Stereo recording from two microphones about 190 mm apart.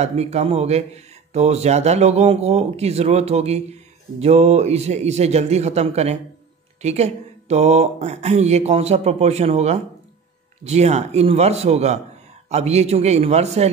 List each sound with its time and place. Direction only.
0.0 s speech: 35° right (ahead or behind)